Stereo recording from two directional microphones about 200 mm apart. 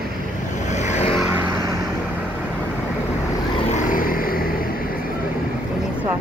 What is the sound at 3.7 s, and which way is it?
Vehicle, 45° left (ahead or behind).